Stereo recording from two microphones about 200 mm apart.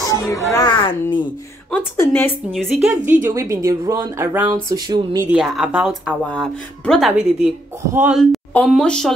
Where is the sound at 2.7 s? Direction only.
10° right (ahead or behind).